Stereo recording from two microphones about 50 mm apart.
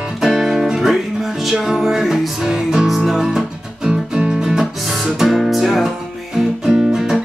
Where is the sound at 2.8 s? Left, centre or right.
Centre.